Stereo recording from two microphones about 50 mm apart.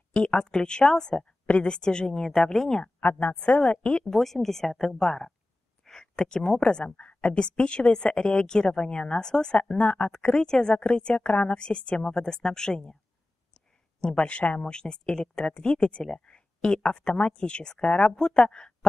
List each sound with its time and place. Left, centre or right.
0.1 s a woman's voice: left
1.4 s a sound: left
1.7 s a woman's voice: centre
3.0 s a woman's voice: left
4.0 s a woman's voice: centre
14.0 s a woman's voice: centre